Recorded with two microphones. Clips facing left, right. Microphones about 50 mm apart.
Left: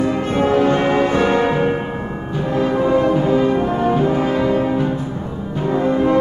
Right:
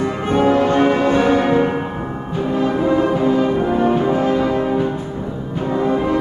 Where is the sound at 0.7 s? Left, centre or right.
Centre.